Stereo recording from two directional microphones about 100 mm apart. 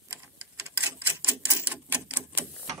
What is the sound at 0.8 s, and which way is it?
Typewriter, 20° right (ahead or behind).